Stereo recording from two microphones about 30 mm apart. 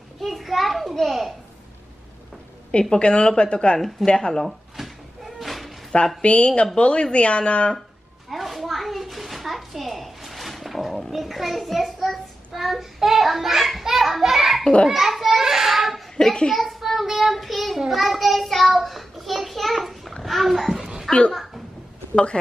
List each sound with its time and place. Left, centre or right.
0.2 s children playing: centre
1.0 s speech: centre
3.0 s speech: left
3.7 s speech: centre
4.5 s cat: centre
6.2 s speech: left
8.3 s a sound: centre
13.8 s children playing: centre
16.2 s speech: left
16.5 s child singing: centre
20.2 s a sound: centre
21.1 s a child's voice: centre
22.1 s a woman's voice: left